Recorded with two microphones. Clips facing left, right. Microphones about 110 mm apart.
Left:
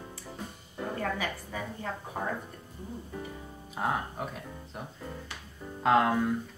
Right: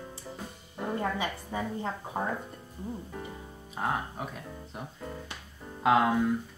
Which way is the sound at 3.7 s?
Centre (ahead or behind).